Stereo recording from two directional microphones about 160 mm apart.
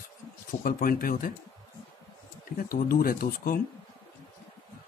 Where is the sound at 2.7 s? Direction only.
65° left (ahead or behind).